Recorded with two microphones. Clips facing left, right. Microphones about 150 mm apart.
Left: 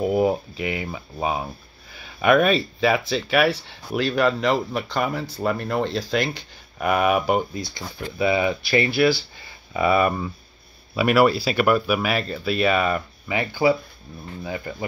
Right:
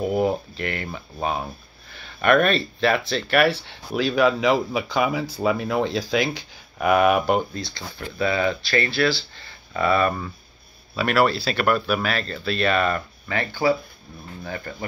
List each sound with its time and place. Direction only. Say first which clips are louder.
0.0 s speech: left 2 dB; 5° left (ahead or behind)
7.6 s speech: left 2 dB; 15° left (ahead or behind)